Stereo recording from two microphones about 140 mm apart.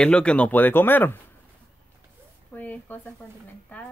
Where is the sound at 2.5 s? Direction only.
10° left (ahead or behind).